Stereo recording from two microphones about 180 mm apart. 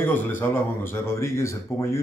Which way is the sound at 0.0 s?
10° left (ahead or behind).